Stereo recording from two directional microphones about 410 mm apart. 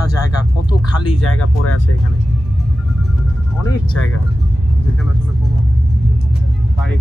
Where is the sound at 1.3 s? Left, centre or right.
Left.